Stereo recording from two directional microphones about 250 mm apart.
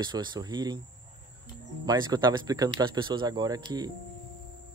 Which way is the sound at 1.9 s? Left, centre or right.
Centre.